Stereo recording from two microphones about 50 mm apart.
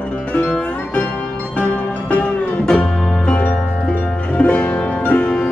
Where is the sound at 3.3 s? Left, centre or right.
Left.